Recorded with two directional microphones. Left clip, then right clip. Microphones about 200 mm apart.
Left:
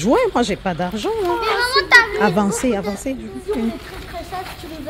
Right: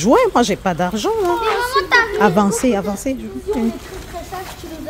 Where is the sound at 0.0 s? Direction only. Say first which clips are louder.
Right 3 dB; 10° right (ahead or behind).